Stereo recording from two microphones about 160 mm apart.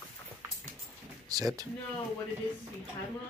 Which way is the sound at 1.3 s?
20° right (ahead or behind).